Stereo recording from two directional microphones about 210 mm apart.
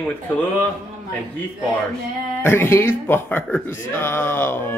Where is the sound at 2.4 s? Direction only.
10° left (ahead or behind).